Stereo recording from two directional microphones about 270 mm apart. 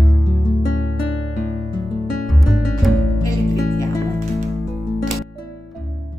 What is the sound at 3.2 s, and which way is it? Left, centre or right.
Music, centre.